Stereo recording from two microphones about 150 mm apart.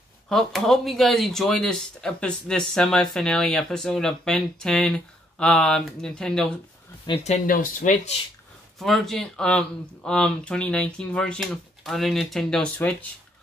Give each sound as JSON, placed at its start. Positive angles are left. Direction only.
{"t": 0.3, "sound": "speech", "side_deg": 0}
{"t": 7.2, "sound": "speech", "side_deg": 65}
{"t": 8.7, "sound": "speech", "side_deg": 0}